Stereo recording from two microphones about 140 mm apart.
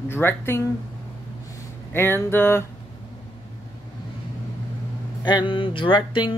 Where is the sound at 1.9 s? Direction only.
15° left (ahead or behind).